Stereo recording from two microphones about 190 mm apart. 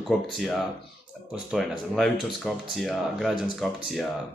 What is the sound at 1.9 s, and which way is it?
Speech, centre (ahead or behind).